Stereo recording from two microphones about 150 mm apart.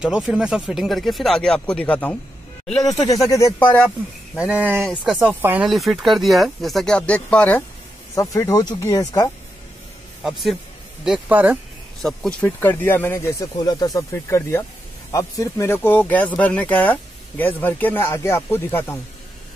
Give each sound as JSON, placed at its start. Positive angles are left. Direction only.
{"t": 0.0, "sound": "speech", "side_deg": -5}
{"t": 3.1, "sound": "speech", "side_deg": 20}
{"t": 4.4, "sound": "speech", "side_deg": -5}
{"t": 5.7, "sound": "speech", "side_deg": 0}
{"t": 8.1, "sound": "speech", "side_deg": 20}
{"t": 10.2, "sound": "speech", "side_deg": 0}
{"t": 11.1, "sound": "speech", "side_deg": -10}
{"t": 12.0, "sound": "speech", "side_deg": 0}